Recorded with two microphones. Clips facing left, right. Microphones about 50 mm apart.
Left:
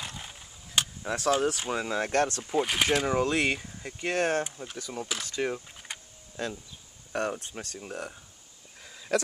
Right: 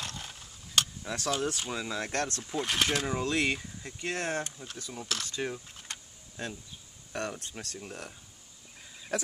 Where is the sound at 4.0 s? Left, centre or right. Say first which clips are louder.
Left 6 dB; left.